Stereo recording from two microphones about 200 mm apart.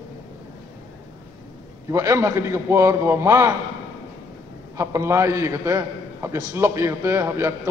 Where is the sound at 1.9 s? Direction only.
15° right (ahead or behind).